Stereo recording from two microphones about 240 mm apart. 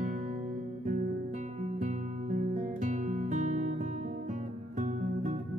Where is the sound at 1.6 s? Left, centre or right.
Right.